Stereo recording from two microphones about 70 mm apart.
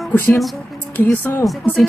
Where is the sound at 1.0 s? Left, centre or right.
Left.